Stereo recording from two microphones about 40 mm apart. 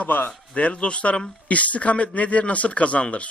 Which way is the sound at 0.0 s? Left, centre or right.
Left.